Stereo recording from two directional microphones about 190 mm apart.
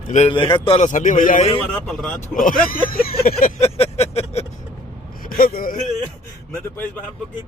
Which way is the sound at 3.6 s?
35° left (ahead or behind).